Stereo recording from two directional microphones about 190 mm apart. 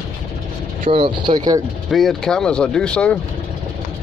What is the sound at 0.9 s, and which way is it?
Speech, 25° right (ahead or behind).